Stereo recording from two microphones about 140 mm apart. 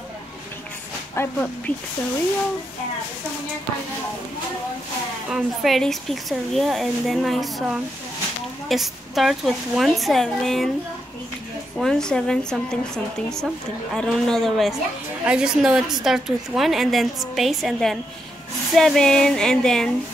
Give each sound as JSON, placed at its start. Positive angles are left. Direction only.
{"t": 1.1, "sound": "speech", "side_deg": 15}
{"t": 5.3, "sound": "a woman's voice", "side_deg": 0}
{"t": 11.7, "sound": "a woman's voice", "side_deg": 5}